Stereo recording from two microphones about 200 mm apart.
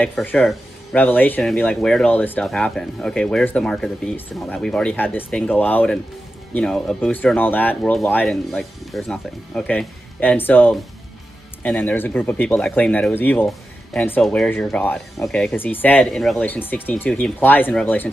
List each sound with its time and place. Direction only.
0.0 s speech: 10° left (ahead or behind)